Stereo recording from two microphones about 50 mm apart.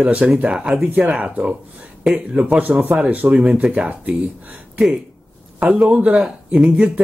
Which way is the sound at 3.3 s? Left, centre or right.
Centre.